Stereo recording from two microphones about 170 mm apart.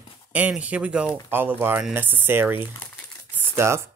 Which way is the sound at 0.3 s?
10° right (ahead or behind).